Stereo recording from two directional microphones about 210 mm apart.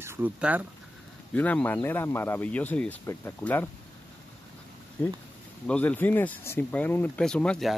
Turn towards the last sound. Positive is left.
turn(degrees=5)  # may be behind; listen again after turning